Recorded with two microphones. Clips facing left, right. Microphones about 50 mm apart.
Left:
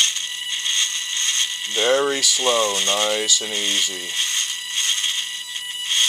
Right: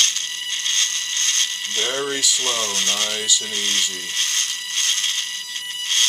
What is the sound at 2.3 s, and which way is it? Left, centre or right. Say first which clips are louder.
Speech: left 5 dB; centre.